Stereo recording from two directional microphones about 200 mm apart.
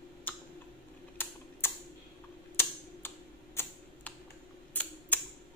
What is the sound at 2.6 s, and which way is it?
Typewriter, 10° left (ahead or behind).